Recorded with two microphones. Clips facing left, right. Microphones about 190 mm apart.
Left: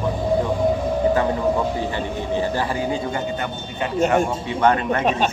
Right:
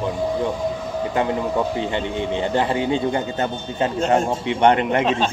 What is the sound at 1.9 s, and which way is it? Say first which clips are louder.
A man's voice: right 1 dB; 25° right (ahead or behind).